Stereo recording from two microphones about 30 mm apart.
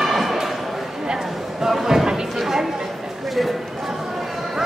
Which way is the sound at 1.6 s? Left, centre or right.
Centre.